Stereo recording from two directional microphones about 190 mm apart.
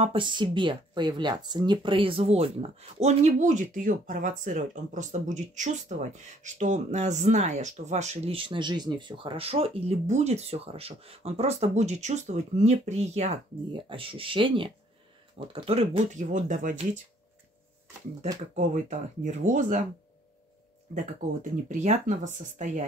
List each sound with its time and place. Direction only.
0.0 s speech: 25° right (ahead or behind); by 16.7 s 45° right (ahead or behind)
18.5 s speech: 40° right (ahead or behind)
20.9 s speech: 40° right (ahead or behind)